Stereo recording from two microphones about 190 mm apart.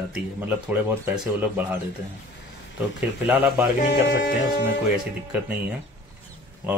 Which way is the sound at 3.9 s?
60° left (ahead or behind).